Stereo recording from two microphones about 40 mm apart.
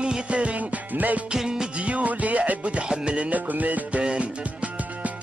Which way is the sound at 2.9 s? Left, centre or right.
Right.